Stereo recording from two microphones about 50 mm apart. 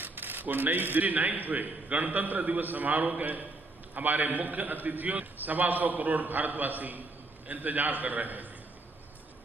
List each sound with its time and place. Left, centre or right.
0.0 s a man's voice: right